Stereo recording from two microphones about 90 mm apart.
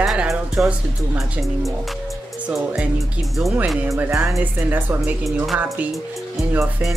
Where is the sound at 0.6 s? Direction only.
5° right (ahead or behind).